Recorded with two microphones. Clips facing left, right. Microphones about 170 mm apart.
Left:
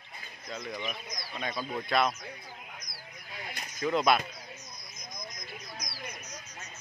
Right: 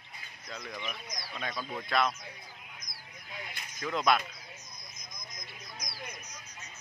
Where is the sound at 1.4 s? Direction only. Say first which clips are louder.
Left 3 dB; 5° left (ahead or behind).